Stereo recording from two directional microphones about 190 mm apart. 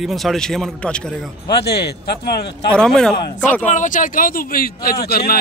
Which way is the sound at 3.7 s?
40° left (ahead or behind).